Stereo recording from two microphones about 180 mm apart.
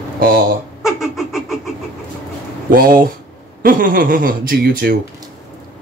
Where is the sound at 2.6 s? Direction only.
55° right (ahead or behind).